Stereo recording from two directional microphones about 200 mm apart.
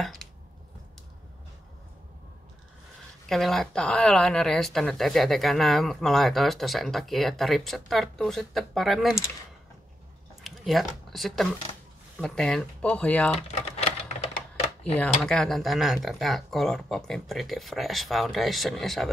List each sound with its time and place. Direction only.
0.0 s chopping: centre (ahead or behind)
3.3 s speech: centre (ahead or behind)
10.4 s speech: centre (ahead or behind)
13.4 s typewriter: 30° left (ahead or behind)
14.8 s speech: 5° left (ahead or behind)